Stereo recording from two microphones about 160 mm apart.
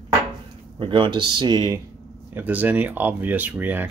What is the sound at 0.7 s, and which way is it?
Speech, 30° right (ahead or behind).